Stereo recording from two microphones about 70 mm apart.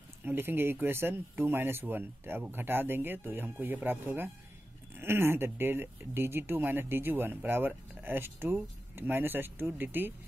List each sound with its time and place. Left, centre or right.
0.2 s speech: right